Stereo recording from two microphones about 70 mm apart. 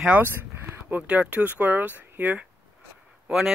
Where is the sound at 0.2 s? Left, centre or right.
Right.